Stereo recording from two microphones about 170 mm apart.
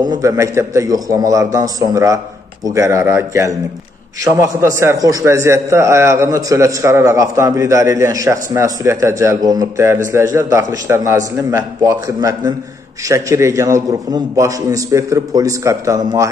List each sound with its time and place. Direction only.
0.0 s a man's voice: 20° right (ahead or behind)